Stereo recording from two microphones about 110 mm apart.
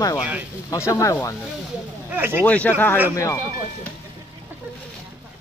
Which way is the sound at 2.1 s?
20° right (ahead or behind).